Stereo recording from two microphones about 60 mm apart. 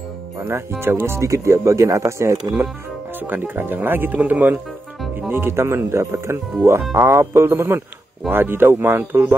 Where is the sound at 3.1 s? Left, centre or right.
Right.